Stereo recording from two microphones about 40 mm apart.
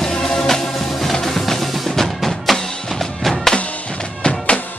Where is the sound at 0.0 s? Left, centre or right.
Centre.